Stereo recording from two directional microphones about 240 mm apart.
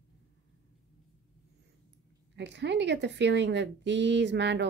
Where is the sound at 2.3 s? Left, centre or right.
Right.